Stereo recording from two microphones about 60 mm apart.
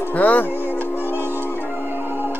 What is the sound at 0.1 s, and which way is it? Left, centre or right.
Speech, left.